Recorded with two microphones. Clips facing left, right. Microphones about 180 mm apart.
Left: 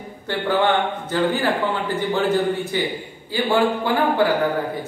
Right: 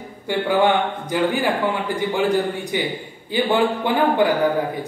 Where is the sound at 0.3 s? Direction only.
15° right (ahead or behind).